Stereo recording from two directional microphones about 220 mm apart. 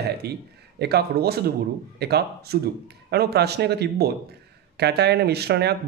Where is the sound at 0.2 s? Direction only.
45° right (ahead or behind).